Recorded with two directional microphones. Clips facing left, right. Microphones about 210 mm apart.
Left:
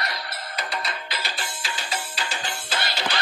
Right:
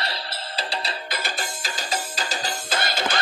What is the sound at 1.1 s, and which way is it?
Music, 45° right (ahead or behind).